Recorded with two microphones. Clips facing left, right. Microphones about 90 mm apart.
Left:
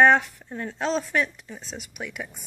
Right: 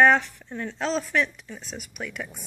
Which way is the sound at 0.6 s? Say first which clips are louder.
Left 1 dB; 35° left (ahead or behind).